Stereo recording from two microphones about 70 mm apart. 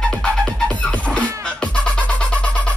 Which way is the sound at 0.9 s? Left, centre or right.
Centre.